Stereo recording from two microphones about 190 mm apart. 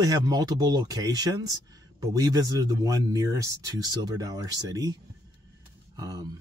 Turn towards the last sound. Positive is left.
turn(degrees=-20)  # may be behind; listen again after turning